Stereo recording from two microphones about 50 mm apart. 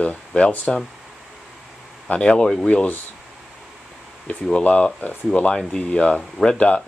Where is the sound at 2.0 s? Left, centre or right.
Centre.